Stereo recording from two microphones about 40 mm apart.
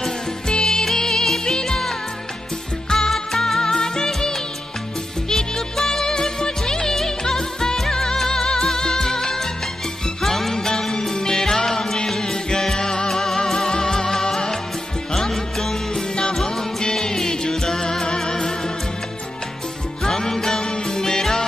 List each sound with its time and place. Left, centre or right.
0.5 s music of bollywood: centre
1.4 s music: centre
20.0 s music: centre